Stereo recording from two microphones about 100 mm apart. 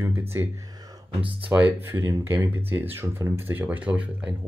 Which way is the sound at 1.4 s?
20° right (ahead or behind).